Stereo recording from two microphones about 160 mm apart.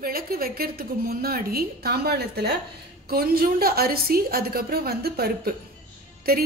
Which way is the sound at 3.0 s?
70° right (ahead or behind).